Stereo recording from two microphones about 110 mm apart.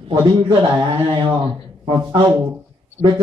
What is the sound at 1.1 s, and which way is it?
Speech, 50° right (ahead or behind).